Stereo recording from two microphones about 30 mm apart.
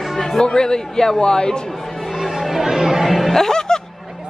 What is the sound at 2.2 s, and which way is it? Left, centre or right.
Chatter, centre.